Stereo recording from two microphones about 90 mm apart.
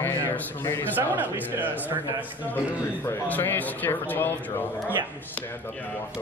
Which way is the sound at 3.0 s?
25° left (ahead or behind).